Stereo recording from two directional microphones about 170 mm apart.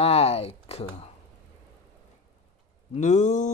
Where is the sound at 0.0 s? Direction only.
35° left (ahead or behind).